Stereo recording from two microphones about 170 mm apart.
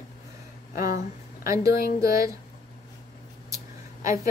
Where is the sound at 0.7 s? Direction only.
55° left (ahead or behind).